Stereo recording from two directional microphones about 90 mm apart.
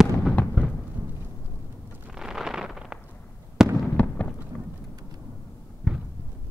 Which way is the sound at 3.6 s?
5° right (ahead or behind).